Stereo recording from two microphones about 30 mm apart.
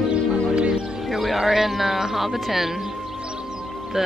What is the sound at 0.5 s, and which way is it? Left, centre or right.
Music, right.